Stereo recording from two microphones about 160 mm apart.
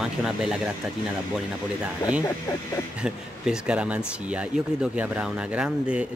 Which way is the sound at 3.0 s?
5° right (ahead or behind).